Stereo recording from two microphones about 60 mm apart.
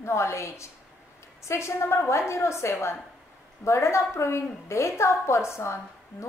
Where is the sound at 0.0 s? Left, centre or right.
Left.